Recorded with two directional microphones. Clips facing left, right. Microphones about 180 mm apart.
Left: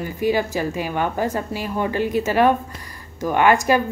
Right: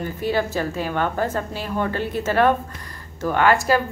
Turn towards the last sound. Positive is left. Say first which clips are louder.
# left 1 dB
turn(degrees=15)  # may be behind; listen again after turning